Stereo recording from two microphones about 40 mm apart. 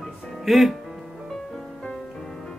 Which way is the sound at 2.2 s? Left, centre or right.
Centre.